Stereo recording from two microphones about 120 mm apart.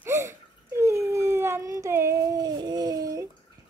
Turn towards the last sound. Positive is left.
turn(degrees=-30)  # may be behind; listen again after turning